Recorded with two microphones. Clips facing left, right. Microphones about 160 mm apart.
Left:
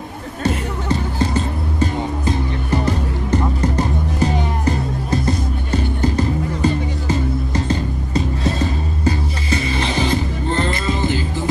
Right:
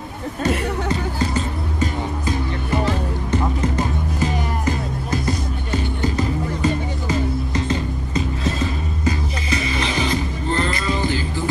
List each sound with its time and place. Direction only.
2.8 s music: 35° left (ahead or behind)
5.7 s music: 35° left (ahead or behind)